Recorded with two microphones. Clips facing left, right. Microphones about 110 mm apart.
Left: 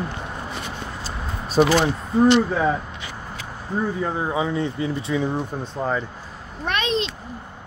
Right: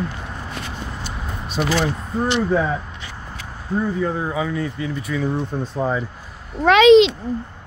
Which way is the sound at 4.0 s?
20° left (ahead or behind).